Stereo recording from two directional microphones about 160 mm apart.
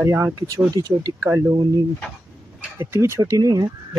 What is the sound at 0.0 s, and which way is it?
Speech, 15° right (ahead or behind).